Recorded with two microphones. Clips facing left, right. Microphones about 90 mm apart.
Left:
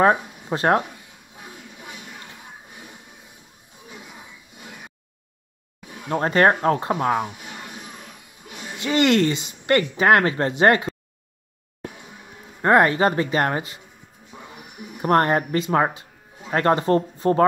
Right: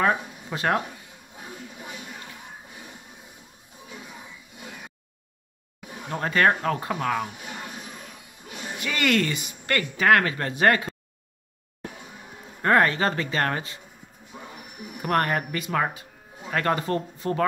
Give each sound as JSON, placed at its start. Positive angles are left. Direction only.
{"t": 0.0, "sound": "speech", "side_deg": 35}
{"t": 6.0, "sound": "speech", "side_deg": 35}
{"t": 8.7, "sound": "speech", "side_deg": 25}
{"t": 12.6, "sound": "speech", "side_deg": 20}
{"t": 15.0, "sound": "speech", "side_deg": 30}